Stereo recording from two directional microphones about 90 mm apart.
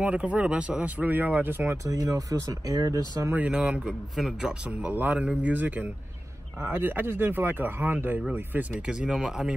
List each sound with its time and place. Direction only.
0.0 s speech: 15° right (ahead or behind)
1.9 s speech: 40° right (ahead or behind)
3.3 s a man's voice: 10° right (ahead or behind)